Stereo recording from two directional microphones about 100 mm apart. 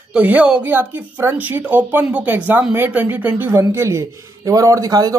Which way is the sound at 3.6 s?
30° right (ahead or behind).